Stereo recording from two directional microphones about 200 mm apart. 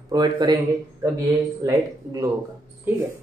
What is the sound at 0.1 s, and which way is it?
Speech, 20° right (ahead or behind).